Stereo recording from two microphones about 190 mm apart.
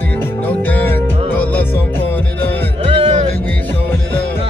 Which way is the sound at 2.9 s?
35° right (ahead or behind).